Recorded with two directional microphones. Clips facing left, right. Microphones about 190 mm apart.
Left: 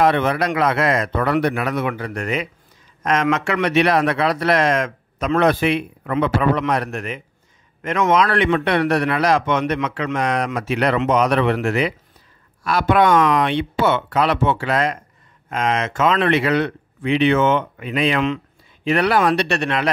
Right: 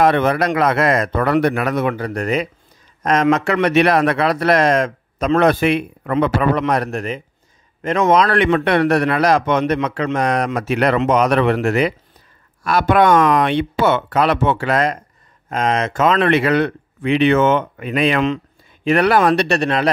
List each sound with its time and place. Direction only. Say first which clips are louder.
0.0 s a man's voice: right 2 dB; 45° right (ahead or behind)
5.4 s a man's voice: right 1 dB; 50° right (ahead or behind)